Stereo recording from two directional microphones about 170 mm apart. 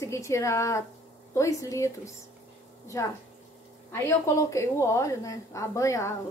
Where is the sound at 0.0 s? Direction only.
15° left (ahead or behind).